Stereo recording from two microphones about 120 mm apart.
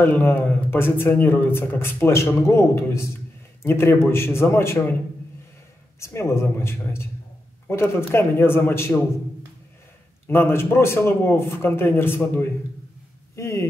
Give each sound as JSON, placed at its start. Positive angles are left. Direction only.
{"t": 0.0, "sound": "a man's voice", "side_deg": 15}
{"t": 5.9, "sound": "a man's voice", "side_deg": 25}
{"t": 10.2, "sound": "a man's voice", "side_deg": 20}